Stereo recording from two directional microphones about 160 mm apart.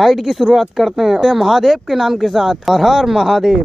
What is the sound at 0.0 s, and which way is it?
Speech, centre (ahead or behind).